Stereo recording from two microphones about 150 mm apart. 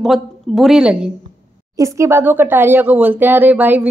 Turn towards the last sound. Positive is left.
turn(degrees=-10)  # may be behind; listen again after turning